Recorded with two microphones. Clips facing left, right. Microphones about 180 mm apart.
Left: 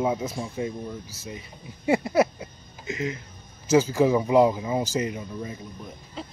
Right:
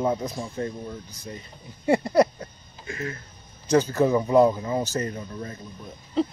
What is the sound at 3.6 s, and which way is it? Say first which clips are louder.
Speech: left 1 dB; 10° left (ahead or behind).